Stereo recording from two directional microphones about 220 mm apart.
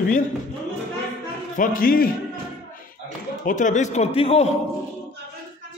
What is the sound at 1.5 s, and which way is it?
Speech, 40° left (ahead or behind).